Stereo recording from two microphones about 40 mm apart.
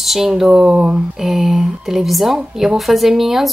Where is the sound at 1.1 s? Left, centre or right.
Centre.